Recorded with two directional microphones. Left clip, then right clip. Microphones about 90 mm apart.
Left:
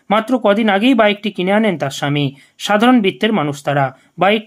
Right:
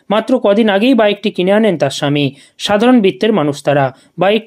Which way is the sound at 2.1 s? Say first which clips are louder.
Right 4 dB; 40° right (ahead or behind).